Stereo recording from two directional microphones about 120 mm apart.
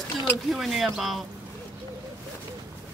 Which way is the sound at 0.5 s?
Centre (ahead or behind).